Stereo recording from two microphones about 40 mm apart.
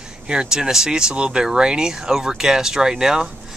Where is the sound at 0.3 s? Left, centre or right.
Right.